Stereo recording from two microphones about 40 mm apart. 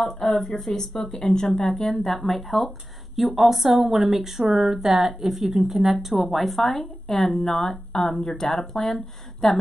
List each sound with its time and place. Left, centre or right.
0.0 s a woman's voice: centre